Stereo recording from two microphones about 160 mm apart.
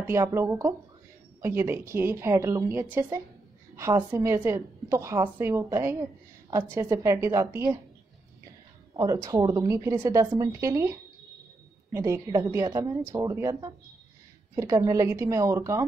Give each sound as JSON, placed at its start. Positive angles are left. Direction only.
{"t": 0.0, "sound": "a woman's voice", "side_deg": -15}
{"t": 8.9, "sound": "a woman's voice", "side_deg": -20}